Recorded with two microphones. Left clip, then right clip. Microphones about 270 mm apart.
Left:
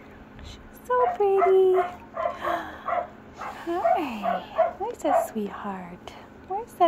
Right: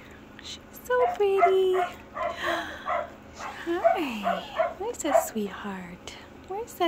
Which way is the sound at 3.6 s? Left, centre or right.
Centre.